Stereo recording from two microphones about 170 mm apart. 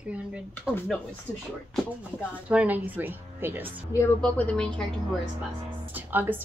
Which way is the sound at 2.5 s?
10° right (ahead or behind).